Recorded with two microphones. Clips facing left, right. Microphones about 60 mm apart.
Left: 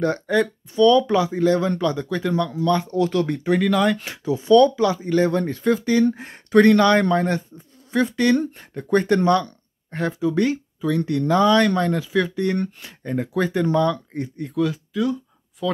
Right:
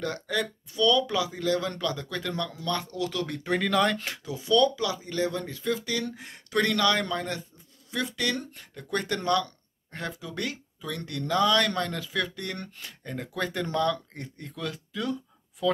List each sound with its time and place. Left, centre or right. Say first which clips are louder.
0.0 s speech: left 10 dB; left
3.0 s speech: left 10 dB; left
3.4 s speech: left 4 dB; centre
4.3 s speech: left 9 dB; left
5.0 s speech: left 10 dB; left; by 15.8 s centre